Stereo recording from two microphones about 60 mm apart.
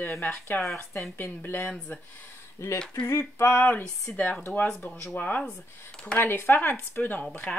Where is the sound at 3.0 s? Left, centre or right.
Left.